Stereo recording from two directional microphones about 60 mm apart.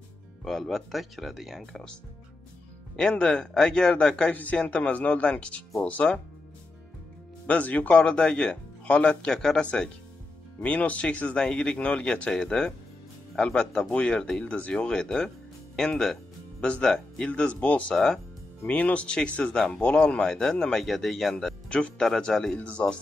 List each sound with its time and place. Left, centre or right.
0.5 s speech: centre
3.0 s speech: centre
4.3 s speech: left
7.4 s speech: left; by 9.7 s centre
10.6 s speech: left
14.4 s speech: left
17.5 s speech: left
17.9 s speech: centre
18.7 s speech: left; by 21.5 s centre
21.6 s speech: centre